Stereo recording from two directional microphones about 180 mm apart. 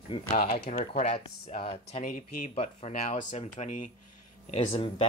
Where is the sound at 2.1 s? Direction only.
50° left (ahead or behind).